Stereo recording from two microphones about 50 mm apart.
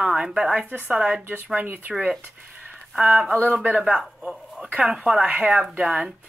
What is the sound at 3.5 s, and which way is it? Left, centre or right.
Speech, right.